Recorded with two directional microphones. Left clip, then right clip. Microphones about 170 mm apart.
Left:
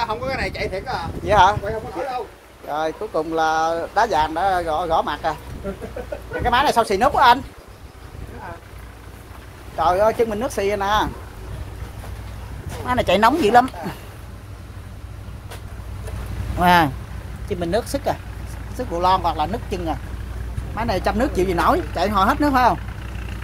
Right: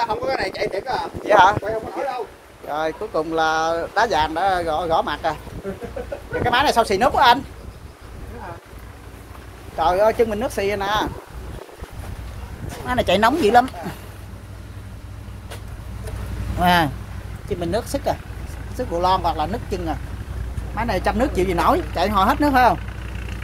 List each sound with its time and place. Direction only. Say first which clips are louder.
0.0 s speech: right 2 dB; 20° left (ahead or behind)
1.2 s speech: right 1 dB; centre (ahead or behind)
2.7 s speech: even; 5° left (ahead or behind)
6.4 s speech: even; 5° right (ahead or behind)
9.8 s speech: even; centre (ahead or behind)
12.8 s speech: left 1 dB; 5° left (ahead or behind)
16.5 s speech: left 2 dB; 10° left (ahead or behind)